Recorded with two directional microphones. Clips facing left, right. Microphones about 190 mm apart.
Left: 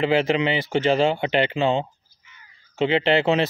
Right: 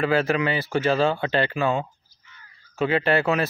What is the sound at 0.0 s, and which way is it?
Speech, 20° left (ahead or behind).